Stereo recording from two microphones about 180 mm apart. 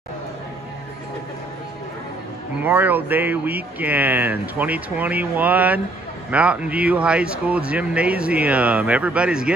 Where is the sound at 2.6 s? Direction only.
10° right (ahead or behind).